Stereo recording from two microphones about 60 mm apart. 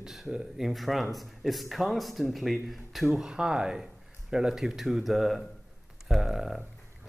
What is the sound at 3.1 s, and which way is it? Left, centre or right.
Speech, centre.